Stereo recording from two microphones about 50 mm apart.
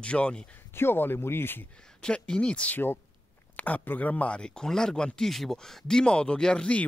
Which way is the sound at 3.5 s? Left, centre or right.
Left.